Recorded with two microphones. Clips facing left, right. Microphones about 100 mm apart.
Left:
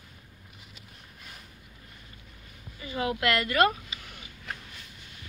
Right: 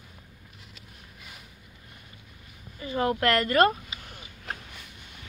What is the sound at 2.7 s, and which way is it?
Speech, 35° right (ahead or behind).